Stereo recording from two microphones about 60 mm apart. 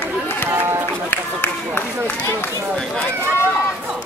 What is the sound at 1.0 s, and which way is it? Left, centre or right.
Run, left.